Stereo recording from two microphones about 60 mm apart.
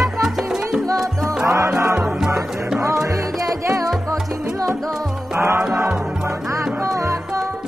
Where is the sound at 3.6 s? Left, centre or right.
Right.